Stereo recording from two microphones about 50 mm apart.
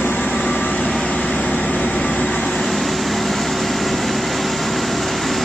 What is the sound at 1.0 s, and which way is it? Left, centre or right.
Vehicle, left.